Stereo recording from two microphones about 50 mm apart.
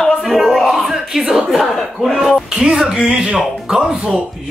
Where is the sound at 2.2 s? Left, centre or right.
Centre.